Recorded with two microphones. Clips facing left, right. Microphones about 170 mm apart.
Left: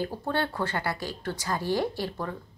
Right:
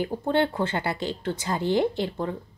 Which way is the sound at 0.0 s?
20° right (ahead or behind).